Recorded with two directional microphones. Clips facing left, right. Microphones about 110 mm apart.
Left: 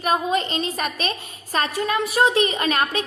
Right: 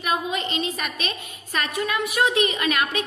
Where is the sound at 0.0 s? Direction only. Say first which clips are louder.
Left 4 dB; 40° left (ahead or behind).